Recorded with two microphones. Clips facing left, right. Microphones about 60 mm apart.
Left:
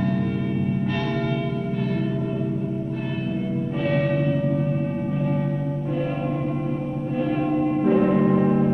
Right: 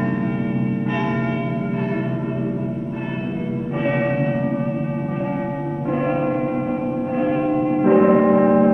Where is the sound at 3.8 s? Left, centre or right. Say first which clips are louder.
Right 2 dB; right.